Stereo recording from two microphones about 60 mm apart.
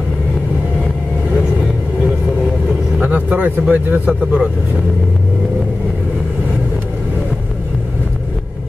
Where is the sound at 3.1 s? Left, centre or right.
Right.